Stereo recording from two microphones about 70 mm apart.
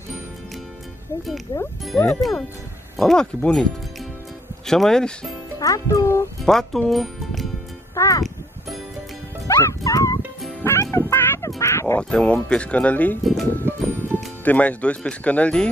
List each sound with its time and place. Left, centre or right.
1.5 s speech: left
2.0 s speech: centre
4.6 s speech: centre
5.6 s speech: left
6.4 s speech: centre
7.9 s music: left
9.6 s speech: left
10.6 s music: left
11.4 s speech: left
12.0 s speech: centre
13.2 s speech: centre
13.7 s music: right
14.4 s speech: left